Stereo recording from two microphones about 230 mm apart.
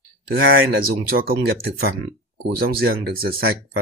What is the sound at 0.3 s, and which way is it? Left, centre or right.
Speech, right.